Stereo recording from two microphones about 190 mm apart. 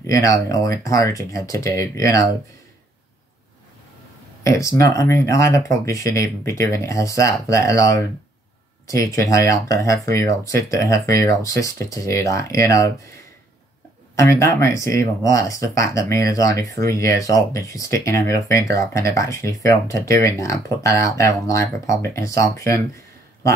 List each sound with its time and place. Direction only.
0.0 s speech: 15° left (ahead or behind)
4.4 s speech: 15° left (ahead or behind)
14.1 s speech: 15° left (ahead or behind)